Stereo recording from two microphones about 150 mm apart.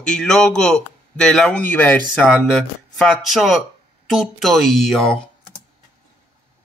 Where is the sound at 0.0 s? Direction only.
5° left (ahead or behind).